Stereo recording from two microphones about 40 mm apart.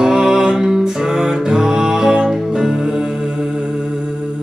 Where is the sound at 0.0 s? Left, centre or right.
Centre.